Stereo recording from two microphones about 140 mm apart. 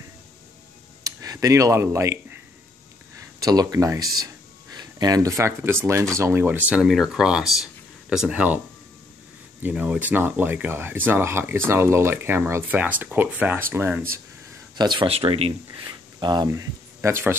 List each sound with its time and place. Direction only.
1.0 s speech: 25° right (ahead or behind)
3.2 s speech: 25° right (ahead or behind); by 8.5 s 10° right (ahead or behind)
9.6 s speech: 10° right (ahead or behind)
14.8 s speech: 35° right (ahead or behind)
15.8 s speech: 30° right (ahead or behind)